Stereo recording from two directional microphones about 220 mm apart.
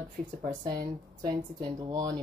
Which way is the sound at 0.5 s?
15° right (ahead or behind).